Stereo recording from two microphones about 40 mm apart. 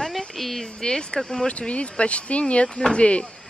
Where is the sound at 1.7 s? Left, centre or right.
Left.